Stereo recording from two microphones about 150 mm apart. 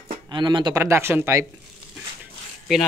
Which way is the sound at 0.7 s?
20° right (ahead or behind).